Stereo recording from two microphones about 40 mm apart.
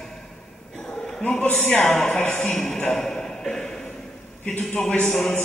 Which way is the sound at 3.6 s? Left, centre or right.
Centre.